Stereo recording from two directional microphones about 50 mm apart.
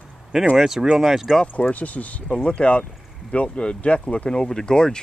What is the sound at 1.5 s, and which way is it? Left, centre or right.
Speech, left.